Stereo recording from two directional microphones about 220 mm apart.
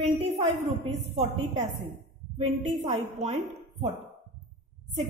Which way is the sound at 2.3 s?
30° right (ahead or behind).